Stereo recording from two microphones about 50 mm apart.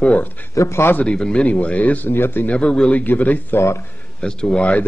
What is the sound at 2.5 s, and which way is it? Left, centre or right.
Speech, left.